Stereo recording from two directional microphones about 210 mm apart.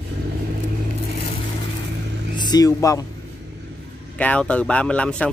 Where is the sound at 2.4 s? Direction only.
20° left (ahead or behind).